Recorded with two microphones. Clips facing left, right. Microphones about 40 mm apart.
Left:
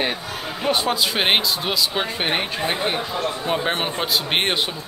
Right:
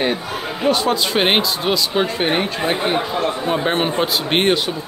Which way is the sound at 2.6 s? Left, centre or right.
Centre.